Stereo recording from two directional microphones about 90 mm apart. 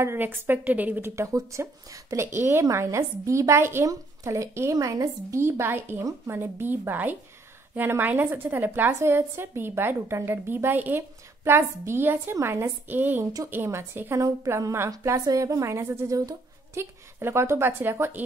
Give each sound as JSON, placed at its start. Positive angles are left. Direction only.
{"t": 0.0, "sound": "a woman's voice", "side_deg": -25}
{"t": 1.1, "sound": "a woman's voice", "side_deg": -35}
{"t": 5.4, "sound": "a woman's voice", "side_deg": -25}